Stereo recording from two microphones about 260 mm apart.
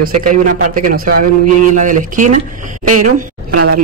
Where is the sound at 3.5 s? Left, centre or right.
Right.